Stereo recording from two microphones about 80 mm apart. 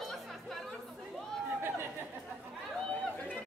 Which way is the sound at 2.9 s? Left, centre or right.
Centre.